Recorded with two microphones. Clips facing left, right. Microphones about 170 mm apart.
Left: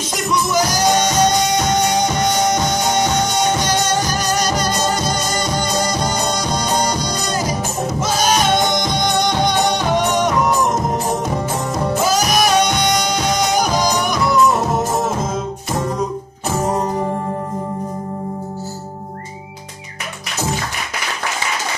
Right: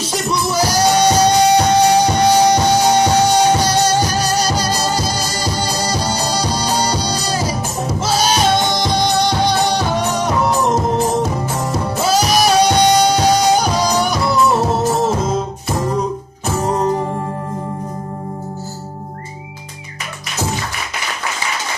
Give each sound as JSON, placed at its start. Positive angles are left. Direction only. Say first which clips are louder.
{"t": 0.1, "sound": "music", "louder": "left 1 dB", "side_deg": -30}